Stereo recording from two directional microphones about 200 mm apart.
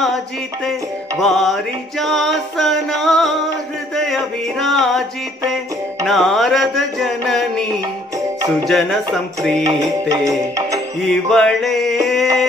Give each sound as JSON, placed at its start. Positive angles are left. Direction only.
{"t": 1.2, "sound": "music", "side_deg": 0}
{"t": 6.0, "sound": "music", "side_deg": 0}
{"t": 8.6, "sound": "music", "side_deg": 0}
{"t": 9.6, "sound": "music", "side_deg": -15}
{"t": 11.0, "sound": "music", "side_deg": 0}